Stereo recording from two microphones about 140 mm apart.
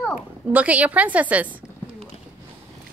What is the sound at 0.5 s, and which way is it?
Speech, 10° right (ahead or behind).